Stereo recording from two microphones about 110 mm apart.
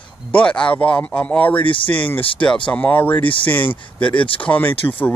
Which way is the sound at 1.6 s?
50° left (ahead or behind).